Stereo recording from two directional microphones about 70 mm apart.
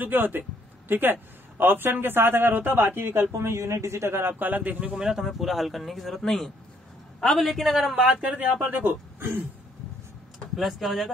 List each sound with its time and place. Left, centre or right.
0.0 s a man's voice: right
5.0 s speech: centre
7.9 s speech: centre
10.5 s speech: centre